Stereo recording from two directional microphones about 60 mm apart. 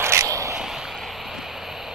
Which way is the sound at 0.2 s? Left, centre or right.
Right.